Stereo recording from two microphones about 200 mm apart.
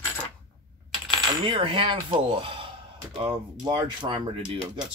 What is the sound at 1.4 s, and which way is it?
Speech, 25° right (ahead or behind).